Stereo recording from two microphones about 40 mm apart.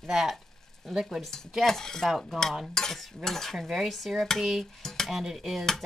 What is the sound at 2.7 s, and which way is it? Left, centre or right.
Stir, centre.